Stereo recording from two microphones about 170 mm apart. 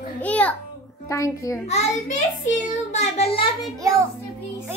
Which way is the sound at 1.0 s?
20° left (ahead or behind).